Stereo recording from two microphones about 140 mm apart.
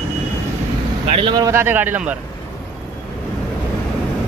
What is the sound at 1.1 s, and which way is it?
Speech, 40° right (ahead or behind).